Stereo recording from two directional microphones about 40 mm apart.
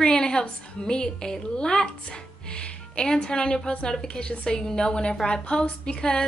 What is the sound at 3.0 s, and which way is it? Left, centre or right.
A woman's voice, left.